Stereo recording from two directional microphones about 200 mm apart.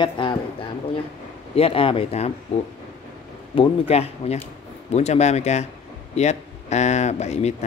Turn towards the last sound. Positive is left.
turn(degrees=35)  # may be behind; listen again after turning